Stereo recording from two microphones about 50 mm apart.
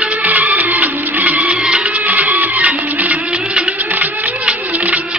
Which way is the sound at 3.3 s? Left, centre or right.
Right.